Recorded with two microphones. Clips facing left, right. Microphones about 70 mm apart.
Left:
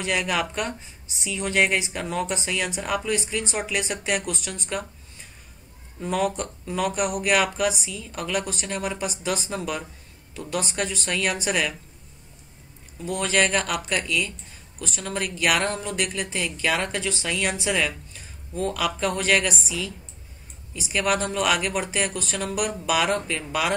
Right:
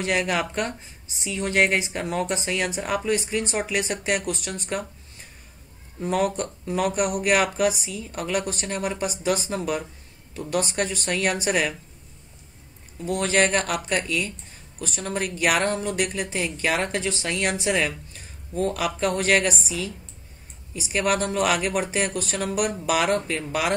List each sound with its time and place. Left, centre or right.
0.0 s speech: centre
5.9 s speech: centre
13.0 s speech: centre
20.9 s speech: centre